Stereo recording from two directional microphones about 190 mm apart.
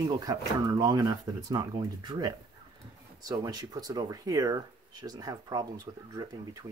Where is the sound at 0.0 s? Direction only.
20° right (ahead or behind).